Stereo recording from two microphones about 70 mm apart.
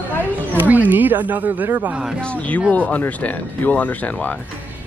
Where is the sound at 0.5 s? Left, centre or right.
Right.